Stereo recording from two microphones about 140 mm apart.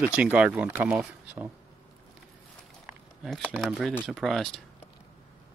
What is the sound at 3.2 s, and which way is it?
Speech, centre (ahead or behind).